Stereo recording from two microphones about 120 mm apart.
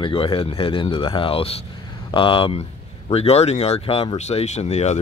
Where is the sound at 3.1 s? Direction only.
60° left (ahead or behind).